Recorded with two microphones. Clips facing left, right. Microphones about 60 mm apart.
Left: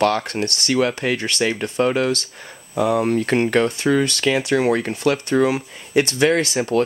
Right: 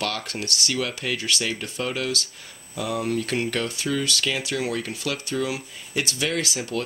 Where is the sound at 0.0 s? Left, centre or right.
Left.